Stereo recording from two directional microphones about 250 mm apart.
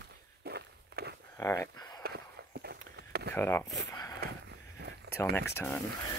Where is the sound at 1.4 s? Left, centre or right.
Centre.